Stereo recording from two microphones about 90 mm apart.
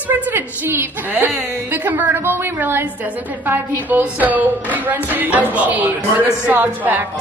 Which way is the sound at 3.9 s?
20° right (ahead or behind).